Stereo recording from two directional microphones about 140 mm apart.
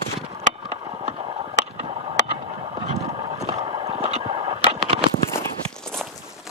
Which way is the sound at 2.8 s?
50° right (ahead or behind).